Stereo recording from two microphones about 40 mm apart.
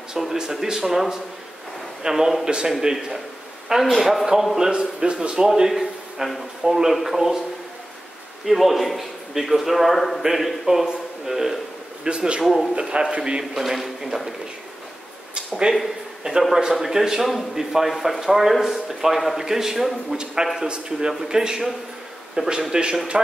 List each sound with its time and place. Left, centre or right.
0.2 s a man's voice: centre
4.6 s a man's voice: right
5.5 s a man's voice: centre
8.5 s a man's voice: centre
12.0 s a man's voice: right
13.6 s speech: centre
15.3 s a sound: right
16.3 s speech: centre
20.6 s a man's voice: right
21.1 s a man's voice: centre